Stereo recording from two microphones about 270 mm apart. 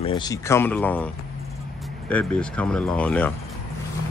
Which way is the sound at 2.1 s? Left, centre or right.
Centre.